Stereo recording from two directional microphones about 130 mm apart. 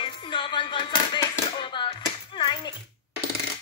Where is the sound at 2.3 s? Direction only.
40° left (ahead or behind).